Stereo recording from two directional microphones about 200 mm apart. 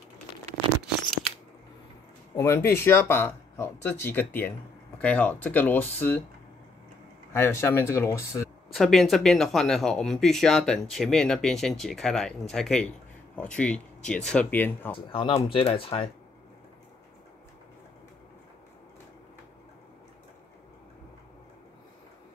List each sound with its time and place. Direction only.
2.3 s speech: 10° left (ahead or behind)
7.3 s speech: 10° left (ahead or behind)
8.7 s speech: centre (ahead or behind)
15.0 s speech: 25° left (ahead or behind)